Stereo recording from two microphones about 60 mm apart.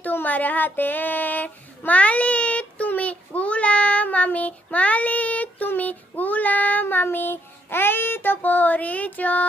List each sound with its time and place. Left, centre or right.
0.0 s child singing: left